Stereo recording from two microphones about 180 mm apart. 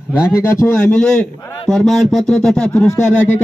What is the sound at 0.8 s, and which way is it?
A man's voice, 5° left (ahead or behind).